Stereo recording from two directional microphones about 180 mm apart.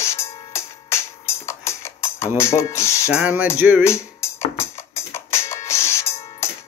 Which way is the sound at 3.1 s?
10° right (ahead or behind).